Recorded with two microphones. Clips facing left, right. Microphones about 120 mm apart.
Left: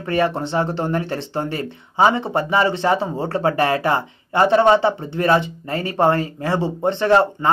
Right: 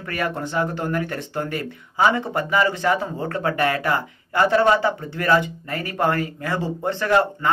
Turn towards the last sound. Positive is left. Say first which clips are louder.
# left 4 dB
turn(degrees=25)  # may be behind; listen again after turning